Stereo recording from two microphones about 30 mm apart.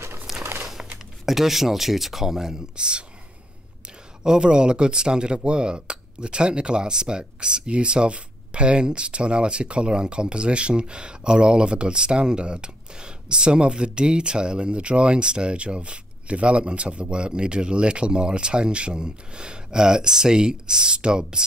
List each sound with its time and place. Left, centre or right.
0.3 s a sound: centre
1.2 s speech: centre
2.7 s speech: right
4.2 s speech: right